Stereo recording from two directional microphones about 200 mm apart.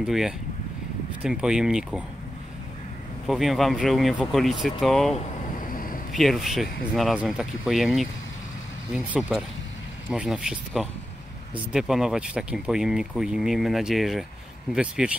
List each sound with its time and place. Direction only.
0.0 s speech: centre (ahead or behind)
3.3 s speech: centre (ahead or behind)
5.7 s a sound: 45° left (ahead or behind)
6.1 s speech: centre (ahead or behind)